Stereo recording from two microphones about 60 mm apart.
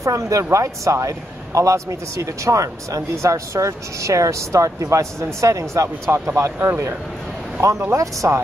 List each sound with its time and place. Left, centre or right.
0.0 s speech: right
6.1 s speech: right